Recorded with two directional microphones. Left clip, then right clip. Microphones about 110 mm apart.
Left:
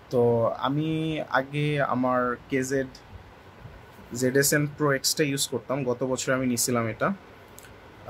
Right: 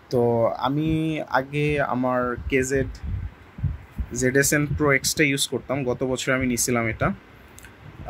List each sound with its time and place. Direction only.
0.4 s speech: 45° right (ahead or behind)
4.1 s speech: 25° right (ahead or behind)